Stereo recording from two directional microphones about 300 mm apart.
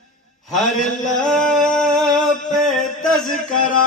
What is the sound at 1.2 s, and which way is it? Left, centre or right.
Humming, centre.